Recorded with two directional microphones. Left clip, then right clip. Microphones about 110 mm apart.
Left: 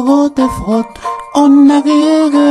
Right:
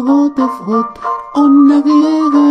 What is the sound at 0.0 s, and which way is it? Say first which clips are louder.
Music: left 1 dB; 50° left (ahead or behind).